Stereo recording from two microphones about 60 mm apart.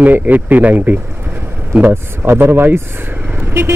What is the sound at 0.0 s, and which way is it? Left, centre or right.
Speech, right.